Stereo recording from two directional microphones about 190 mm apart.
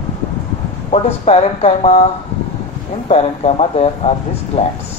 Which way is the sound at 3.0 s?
30° left (ahead or behind).